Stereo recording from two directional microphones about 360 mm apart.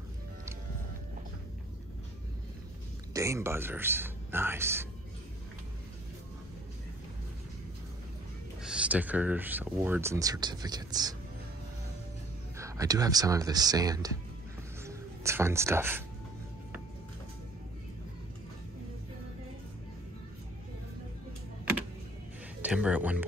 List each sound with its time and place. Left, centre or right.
3.1 s speech: centre
8.6 s speech: centre
12.5 s speech: centre
22.6 s speech: centre